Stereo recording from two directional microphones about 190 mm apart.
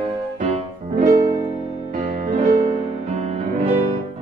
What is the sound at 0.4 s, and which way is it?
Music, 40° right (ahead or behind).